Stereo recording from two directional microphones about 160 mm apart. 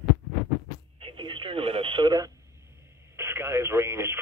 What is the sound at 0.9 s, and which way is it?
Radio, 30° right (ahead or behind).